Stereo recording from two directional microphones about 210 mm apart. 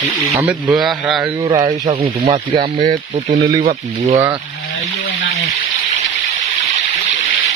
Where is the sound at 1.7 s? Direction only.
30° right (ahead or behind).